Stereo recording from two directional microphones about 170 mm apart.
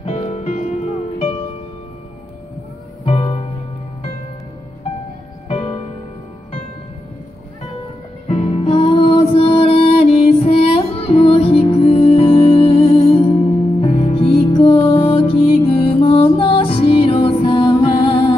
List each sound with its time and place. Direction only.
0.0 s music: 40° left (ahead or behind)
3.1 s music: 35° left (ahead or behind)
5.5 s music: 35° left (ahead or behind)
8.3 s music: 35° left (ahead or behind)